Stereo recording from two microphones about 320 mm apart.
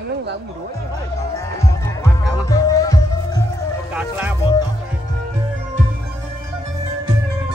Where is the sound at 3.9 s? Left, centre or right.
Centre.